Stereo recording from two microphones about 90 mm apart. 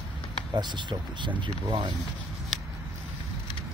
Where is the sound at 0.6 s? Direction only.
55° right (ahead or behind).